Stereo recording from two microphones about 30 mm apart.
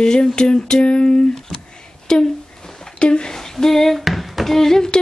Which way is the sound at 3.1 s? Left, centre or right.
Left.